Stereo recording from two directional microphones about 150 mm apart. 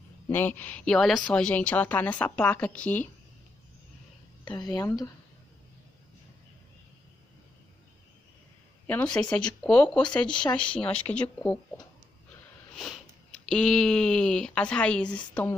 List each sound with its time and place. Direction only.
0.3 s a woman's voice: 15° left (ahead or behind)
4.5 s speech: 25° left (ahead or behind)
8.8 s a woman's voice: 10° left (ahead or behind)